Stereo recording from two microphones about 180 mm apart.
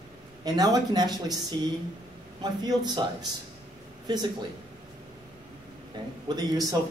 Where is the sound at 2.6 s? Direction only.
20° right (ahead or behind).